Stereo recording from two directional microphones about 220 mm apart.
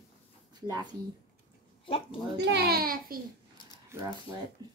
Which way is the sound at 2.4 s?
45° right (ahead or behind).